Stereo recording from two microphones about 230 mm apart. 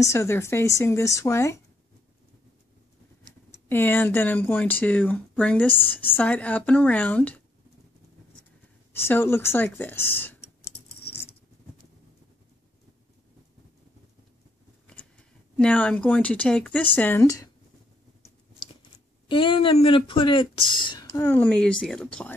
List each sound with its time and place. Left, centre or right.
0.0 s speech: centre
3.6 s speech: centre
8.9 s speech: centre
14.9 s speech: centre
19.2 s speech: left; by 22.3 s centre